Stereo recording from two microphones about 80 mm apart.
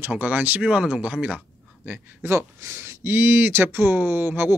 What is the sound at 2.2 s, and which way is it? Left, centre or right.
Speech, right.